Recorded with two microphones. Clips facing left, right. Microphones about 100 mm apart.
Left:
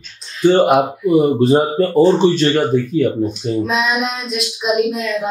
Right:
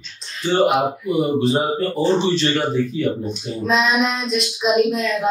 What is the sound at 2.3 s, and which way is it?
Speech, 50° left (ahead or behind).